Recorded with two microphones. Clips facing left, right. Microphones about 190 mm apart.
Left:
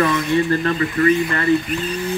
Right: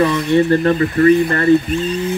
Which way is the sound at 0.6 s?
35° right (ahead or behind).